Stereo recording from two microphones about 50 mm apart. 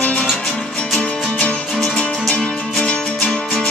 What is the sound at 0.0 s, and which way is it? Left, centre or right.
Music, left.